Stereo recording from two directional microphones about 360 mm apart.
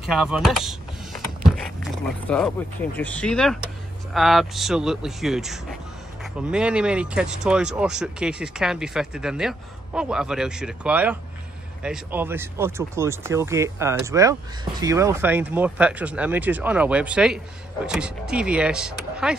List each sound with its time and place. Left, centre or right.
0.0 s vehicle: centre
3.0 s speech: centre